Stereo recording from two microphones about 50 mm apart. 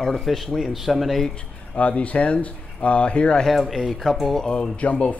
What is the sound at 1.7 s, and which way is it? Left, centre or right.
Speech, left.